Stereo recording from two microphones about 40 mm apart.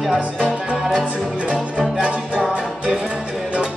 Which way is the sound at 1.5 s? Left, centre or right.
Centre.